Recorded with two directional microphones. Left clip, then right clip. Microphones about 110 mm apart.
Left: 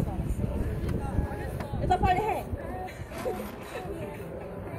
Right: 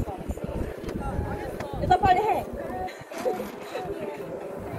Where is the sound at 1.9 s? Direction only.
25° left (ahead or behind).